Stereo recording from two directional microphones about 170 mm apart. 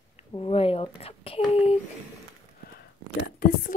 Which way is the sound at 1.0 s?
35° left (ahead or behind).